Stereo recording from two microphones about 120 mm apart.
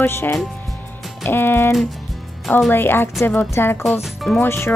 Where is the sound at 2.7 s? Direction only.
20° left (ahead or behind).